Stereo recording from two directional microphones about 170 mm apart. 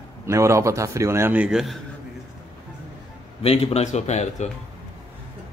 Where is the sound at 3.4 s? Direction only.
40° left (ahead or behind).